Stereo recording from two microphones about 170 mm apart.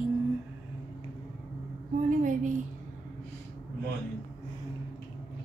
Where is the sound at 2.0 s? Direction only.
50° right (ahead or behind).